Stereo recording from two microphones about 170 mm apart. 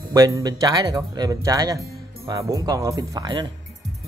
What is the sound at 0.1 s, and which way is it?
Speech, 20° right (ahead or behind).